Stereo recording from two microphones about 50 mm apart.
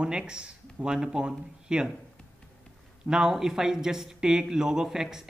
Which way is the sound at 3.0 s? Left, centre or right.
Centre.